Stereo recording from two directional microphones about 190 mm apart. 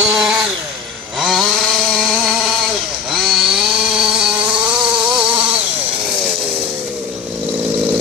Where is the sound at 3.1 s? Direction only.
Centre (ahead or behind).